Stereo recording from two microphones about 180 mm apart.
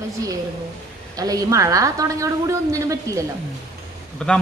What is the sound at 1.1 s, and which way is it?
A woman's voice, 20° right (ahead or behind).